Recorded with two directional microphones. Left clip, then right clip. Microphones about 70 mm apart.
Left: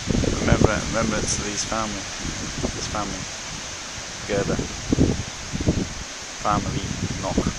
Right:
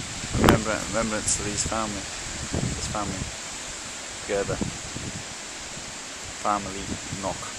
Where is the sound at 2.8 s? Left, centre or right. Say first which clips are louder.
Left 2 dB; centre.